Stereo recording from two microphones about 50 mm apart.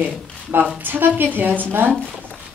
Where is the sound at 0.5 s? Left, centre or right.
Right.